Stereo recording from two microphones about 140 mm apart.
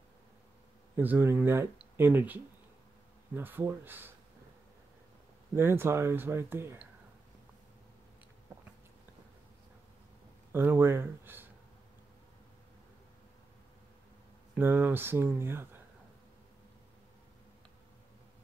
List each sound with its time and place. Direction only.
0.9 s speech: 15° right (ahead or behind)
5.6 s speech: 15° right (ahead or behind)
10.5 s speech: 15° right (ahead or behind)
14.5 s speech: 15° right (ahead or behind)